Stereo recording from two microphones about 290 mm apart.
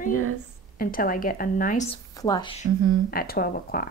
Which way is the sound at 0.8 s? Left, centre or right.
Left.